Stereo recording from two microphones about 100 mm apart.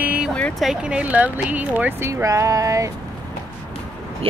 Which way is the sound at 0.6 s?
5° right (ahead or behind).